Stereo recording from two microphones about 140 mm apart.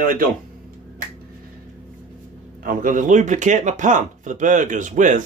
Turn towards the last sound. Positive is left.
turn(degrees=-65)  # may be behind; listen again after turning